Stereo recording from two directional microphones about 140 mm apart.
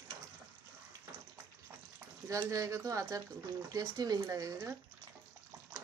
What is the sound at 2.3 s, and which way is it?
Speech, 25° right (ahead or behind).